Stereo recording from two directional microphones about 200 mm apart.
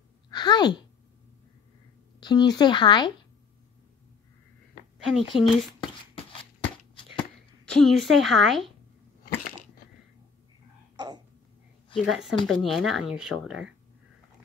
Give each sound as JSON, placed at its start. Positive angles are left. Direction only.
{"t": 0.3, "sound": "a sound", "side_deg": 20}
{"t": 2.1, "sound": "speech", "side_deg": 20}
{"t": 5.0, "sound": "speech", "side_deg": 0}
{"t": 7.2, "sound": "speech", "side_deg": 5}
{"t": 11.0, "sound": "a sound", "side_deg": -20}
{"t": 12.1, "sound": "speech", "side_deg": 0}